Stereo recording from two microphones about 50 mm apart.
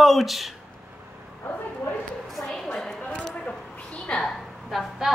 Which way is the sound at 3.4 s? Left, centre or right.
Left.